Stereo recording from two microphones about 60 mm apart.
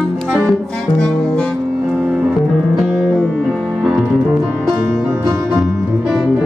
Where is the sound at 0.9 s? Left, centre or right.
Centre.